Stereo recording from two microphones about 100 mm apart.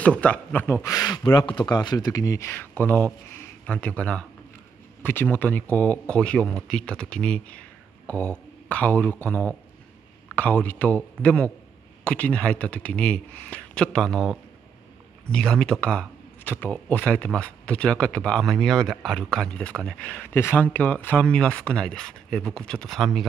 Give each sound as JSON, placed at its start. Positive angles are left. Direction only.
{"t": 0.0, "sound": "speech", "side_deg": 15}
{"t": 0.8, "sound": "speech", "side_deg": 30}
{"t": 1.4, "sound": "speech", "side_deg": 55}
{"t": 2.5, "sound": "speech", "side_deg": 20}